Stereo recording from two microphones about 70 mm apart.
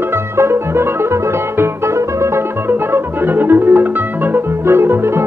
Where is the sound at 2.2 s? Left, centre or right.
Right.